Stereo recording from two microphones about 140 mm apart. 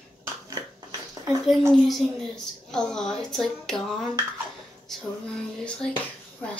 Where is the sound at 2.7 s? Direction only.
5° left (ahead or behind).